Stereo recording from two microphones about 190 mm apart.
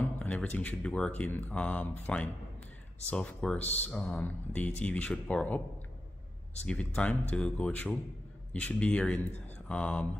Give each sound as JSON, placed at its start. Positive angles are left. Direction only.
{"t": 0.0, "sound": "speech", "side_deg": 10}
{"t": 6.6, "sound": "speech", "side_deg": 5}